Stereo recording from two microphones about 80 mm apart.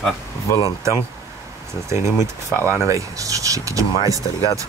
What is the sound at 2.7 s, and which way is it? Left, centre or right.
Speech, right.